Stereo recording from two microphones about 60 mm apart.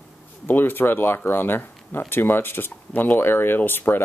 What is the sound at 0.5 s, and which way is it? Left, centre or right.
Speech, left.